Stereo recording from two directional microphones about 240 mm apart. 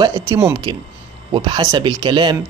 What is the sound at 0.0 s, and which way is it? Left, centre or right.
Speech, centre.